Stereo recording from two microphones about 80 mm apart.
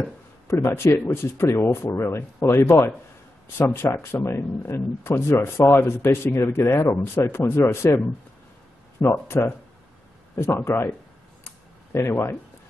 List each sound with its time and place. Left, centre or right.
0.5 s speech: left
9.1 s speech: left
11.4 s a sound: left